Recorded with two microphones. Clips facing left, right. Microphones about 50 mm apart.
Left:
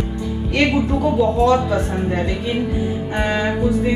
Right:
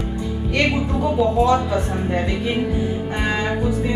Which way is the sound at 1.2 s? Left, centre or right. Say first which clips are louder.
Left 1 dB; centre.